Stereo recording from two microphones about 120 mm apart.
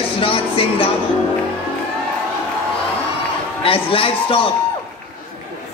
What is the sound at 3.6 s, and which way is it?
Speech, 50° left (ahead or behind).